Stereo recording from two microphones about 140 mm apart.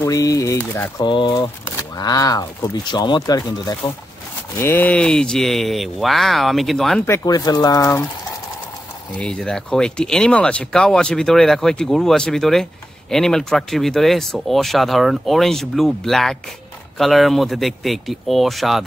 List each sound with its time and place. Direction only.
0.0 s speech: 25° left (ahead or behind)
4.6 s speech: 15° left (ahead or behind)
7.2 s speech: 30° left (ahead or behind)
9.1 s speech: 5° left (ahead or behind)